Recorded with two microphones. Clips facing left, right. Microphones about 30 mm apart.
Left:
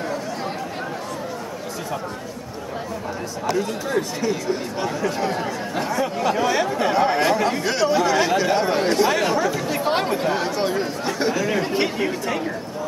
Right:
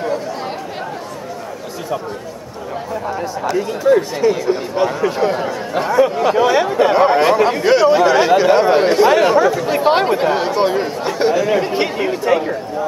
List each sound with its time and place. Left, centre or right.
3.5 s speech: centre